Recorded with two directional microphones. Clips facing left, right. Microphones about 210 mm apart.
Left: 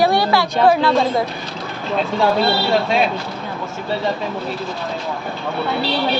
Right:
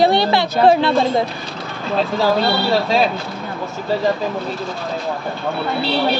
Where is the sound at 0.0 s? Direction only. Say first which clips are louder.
Right 1 dB; 25° right (ahead or behind).